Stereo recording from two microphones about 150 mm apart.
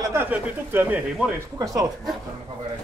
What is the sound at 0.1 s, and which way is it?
Speech, 15° right (ahead or behind).